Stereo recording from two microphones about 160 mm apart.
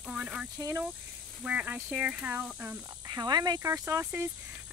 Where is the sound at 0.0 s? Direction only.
5° right (ahead or behind).